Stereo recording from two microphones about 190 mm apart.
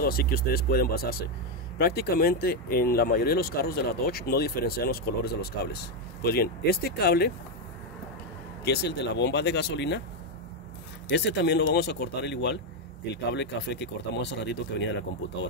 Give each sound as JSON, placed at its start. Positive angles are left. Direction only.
{"t": 0.0, "sound": "speech", "side_deg": 50}
{"t": 8.6, "sound": "speech", "side_deg": 60}
{"t": 11.1, "sound": "speech", "side_deg": 65}